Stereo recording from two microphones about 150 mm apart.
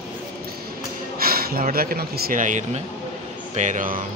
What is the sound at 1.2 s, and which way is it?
Speech, 80° right.